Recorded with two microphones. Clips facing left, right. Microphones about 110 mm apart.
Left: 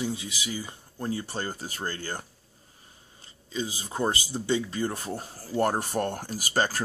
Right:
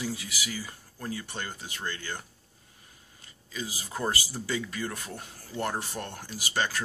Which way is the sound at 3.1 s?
25° left (ahead or behind).